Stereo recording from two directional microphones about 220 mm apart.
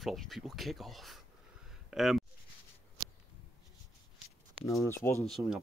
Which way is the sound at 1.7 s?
Centre (ahead or behind).